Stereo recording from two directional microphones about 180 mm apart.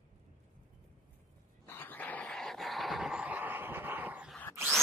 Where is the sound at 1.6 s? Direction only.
10° left (ahead or behind); by 4.3 s 10° right (ahead or behind).